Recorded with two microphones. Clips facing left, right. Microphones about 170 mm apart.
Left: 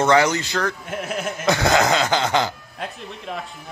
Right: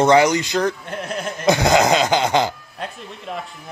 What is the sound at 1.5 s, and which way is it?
Speech, 15° right (ahead or behind).